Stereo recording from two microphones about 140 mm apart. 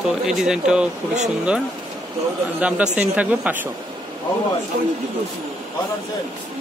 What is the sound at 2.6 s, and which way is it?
Speech, 10° right (ahead or behind).